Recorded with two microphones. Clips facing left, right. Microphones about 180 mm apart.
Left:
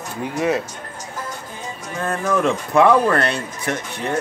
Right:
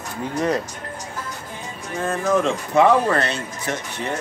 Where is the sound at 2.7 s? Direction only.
65° left (ahead or behind).